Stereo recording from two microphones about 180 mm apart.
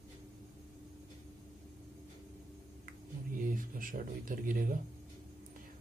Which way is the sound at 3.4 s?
50° right (ahead or behind).